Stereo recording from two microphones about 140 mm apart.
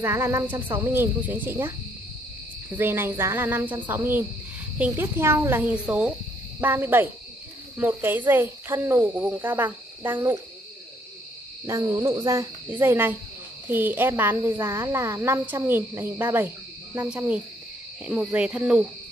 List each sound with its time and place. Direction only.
0.0 s speech: 20° right (ahead or behind)
2.7 s speech: 15° right (ahead or behind)
11.6 s speech: 20° right (ahead or behind)